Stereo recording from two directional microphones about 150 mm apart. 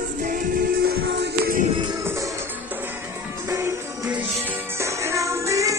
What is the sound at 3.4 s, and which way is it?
Music, 20° right (ahead or behind).